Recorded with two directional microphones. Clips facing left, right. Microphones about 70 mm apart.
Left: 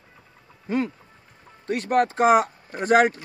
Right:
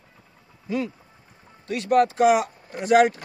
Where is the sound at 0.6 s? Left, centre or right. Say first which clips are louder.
Left 2 dB; left.